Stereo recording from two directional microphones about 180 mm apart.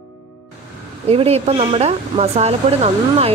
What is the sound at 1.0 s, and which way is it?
Speech, 35° right (ahead or behind).